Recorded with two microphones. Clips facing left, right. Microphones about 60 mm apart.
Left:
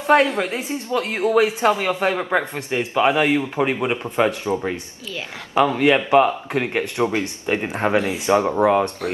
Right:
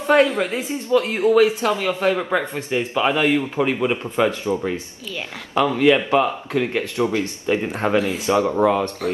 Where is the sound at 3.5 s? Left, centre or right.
Left.